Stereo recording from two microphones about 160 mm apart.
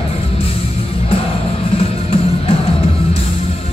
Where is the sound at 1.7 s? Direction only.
35° left (ahead or behind).